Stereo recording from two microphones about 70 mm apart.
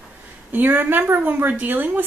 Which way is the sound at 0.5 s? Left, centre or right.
Right.